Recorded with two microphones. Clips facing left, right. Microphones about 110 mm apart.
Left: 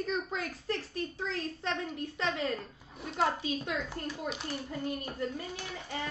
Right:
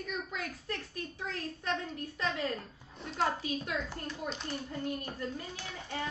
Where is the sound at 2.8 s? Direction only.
5° left (ahead or behind).